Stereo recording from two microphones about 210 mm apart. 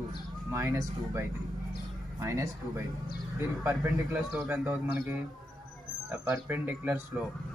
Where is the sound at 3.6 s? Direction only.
Centre (ahead or behind).